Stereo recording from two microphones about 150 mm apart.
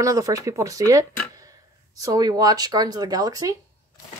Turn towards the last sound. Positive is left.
turn(degrees=-25)  # may be behind; listen again after turning